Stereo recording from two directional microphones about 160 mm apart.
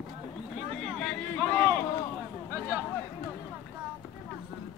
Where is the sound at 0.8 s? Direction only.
5° left (ahead or behind).